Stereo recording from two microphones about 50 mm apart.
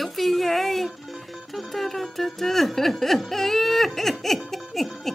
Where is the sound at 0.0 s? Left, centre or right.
Centre.